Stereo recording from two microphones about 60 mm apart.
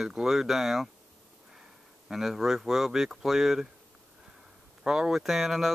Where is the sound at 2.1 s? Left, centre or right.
Centre.